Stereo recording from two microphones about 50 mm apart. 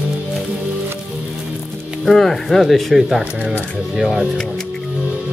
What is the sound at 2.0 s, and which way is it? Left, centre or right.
Speech, centre.